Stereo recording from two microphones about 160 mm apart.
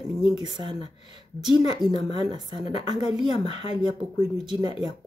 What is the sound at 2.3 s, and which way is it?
Speech, 30° right (ahead or behind).